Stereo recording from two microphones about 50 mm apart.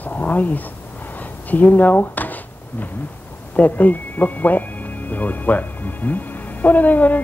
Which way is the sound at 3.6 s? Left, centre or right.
Left.